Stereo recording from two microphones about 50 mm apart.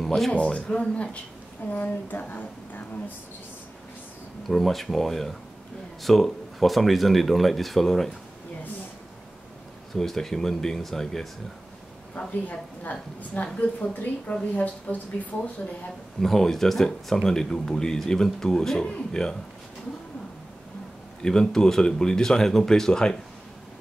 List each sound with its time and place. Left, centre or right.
0.0 s speech: centre
0.3 s speech: left
1.7 s a woman's voice: left
4.5 s speech: centre
9.9 s speech: centre
12.2 s a woman's voice: left
16.2 s speech: centre
21.2 s speech: centre